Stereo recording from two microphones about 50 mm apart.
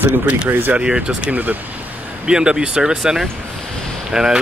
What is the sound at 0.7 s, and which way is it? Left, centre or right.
Speech, centre.